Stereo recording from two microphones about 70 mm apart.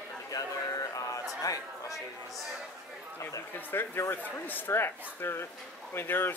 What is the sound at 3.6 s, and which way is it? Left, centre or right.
Speech, left.